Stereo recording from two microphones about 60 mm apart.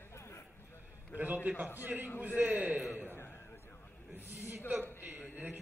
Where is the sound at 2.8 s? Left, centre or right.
Centre.